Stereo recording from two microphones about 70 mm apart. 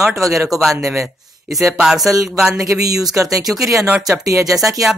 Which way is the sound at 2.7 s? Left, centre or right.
Right.